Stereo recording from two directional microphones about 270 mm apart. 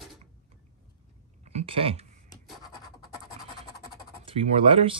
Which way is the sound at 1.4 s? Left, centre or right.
Right.